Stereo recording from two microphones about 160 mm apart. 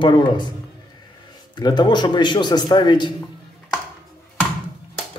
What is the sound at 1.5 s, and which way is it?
A man's voice, 25° left (ahead or behind).